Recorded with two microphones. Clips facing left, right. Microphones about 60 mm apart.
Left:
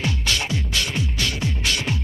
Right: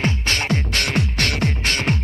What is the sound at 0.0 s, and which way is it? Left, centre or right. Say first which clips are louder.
Music: right 3 dB; right.